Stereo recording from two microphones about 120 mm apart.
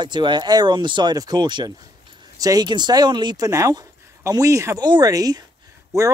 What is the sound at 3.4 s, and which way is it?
Speech, 25° right (ahead or behind).